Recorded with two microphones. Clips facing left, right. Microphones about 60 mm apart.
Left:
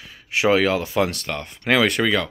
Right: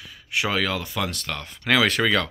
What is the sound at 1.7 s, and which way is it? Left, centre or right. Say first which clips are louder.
Speech: left 2 dB; centre.